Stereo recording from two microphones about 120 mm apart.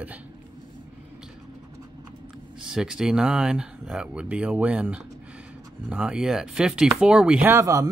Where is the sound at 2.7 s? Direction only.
5° right (ahead or behind).